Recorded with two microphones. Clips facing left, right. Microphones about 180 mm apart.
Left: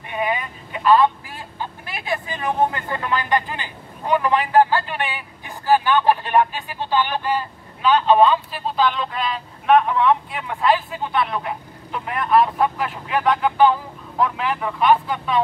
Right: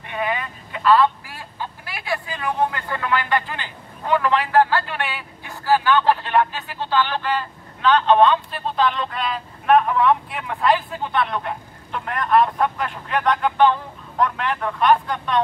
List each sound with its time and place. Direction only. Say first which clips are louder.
0.1 s telephone: left 1 dB; 15° left (ahead or behind)
1.9 s speech: left 1 dB; 20° left (ahead or behind); by 15.4 s 5° left (ahead or behind)